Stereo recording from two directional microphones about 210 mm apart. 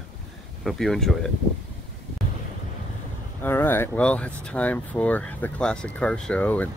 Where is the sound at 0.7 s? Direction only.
Centre (ahead or behind).